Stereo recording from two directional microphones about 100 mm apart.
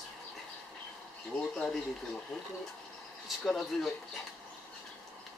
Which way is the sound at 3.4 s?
5° left (ahead or behind).